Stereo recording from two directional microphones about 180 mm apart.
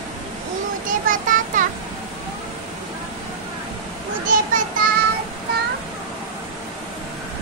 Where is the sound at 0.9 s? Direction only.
50° right (ahead or behind).